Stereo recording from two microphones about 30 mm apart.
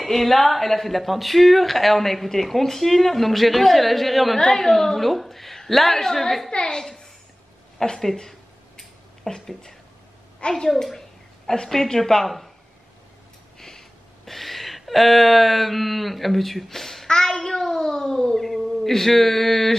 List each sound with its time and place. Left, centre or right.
0.0 s speech: centre
4.4 s a woman's voice: centre
6.5 s a child's voice: left
7.8 s a woman's voice: centre
8.3 s a sound: centre
10.4 s a woman's voice: left
11.0 s speech: centre
13.6 s a sound: centre
17.1 s child singing: centre
17.7 s a sound: centre
18.9 s a woman's voice: centre